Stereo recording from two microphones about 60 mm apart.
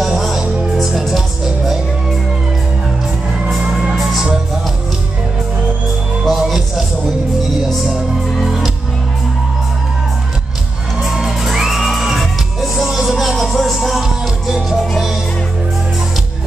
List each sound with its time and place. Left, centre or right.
0.0 s music: centre
3.9 s music: centre
6.2 s music: centre
7.6 s music: centre
11.0 s music: centre